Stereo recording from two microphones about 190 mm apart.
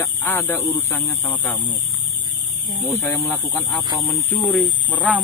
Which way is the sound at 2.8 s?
10° left (ahead or behind).